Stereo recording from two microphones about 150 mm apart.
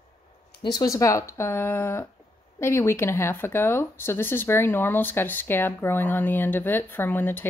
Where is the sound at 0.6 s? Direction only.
25° left (ahead or behind).